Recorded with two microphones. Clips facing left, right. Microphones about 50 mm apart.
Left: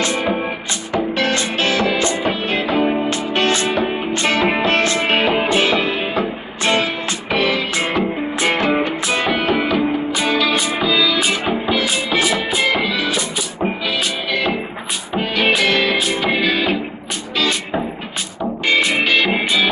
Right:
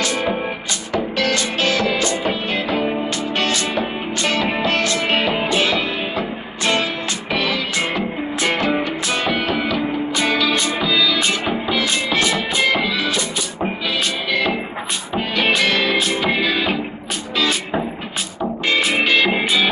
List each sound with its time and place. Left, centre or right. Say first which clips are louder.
0.0 s music: left 2 dB; left; by 13.9 s centre
15.1 s music: left 1 dB; centre